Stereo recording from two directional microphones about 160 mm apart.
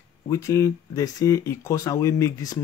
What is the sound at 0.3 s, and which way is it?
Speech, 20° left (ahead or behind).